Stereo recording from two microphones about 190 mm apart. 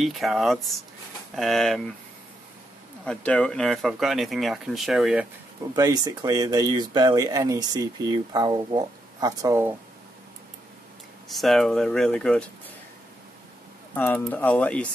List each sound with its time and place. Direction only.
0.0 s speech: centre (ahead or behind)
3.1 s speech: 5° left (ahead or behind)
5.8 s speech: 20° right (ahead or behind)
11.2 s speech: centre (ahead or behind)
13.9 s speech: 10° left (ahead or behind)